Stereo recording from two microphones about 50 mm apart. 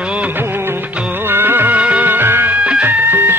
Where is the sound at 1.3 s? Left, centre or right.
Right.